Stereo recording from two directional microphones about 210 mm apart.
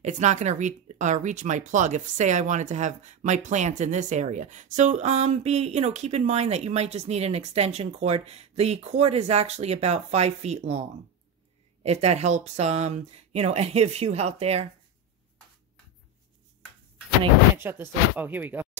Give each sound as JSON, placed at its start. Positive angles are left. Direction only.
{"t": 0.0, "sound": "speech", "side_deg": -35}
{"t": 17.6, "sound": "speech", "side_deg": -10}